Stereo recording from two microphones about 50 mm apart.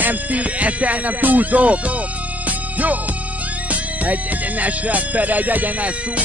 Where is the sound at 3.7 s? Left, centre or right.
Right.